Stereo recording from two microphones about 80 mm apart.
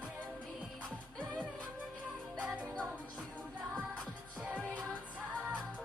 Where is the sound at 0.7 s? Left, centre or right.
Centre.